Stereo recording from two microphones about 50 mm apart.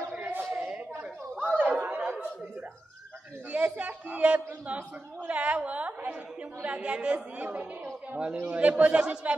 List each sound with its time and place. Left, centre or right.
0.1 s a sound: right
1.4 s chatter: right
3.5 s a man's voice: right